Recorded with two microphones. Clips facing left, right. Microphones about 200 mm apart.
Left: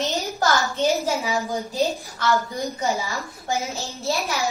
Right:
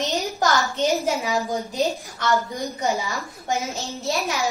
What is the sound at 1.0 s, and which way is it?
A woman's voice, 15° right (ahead or behind).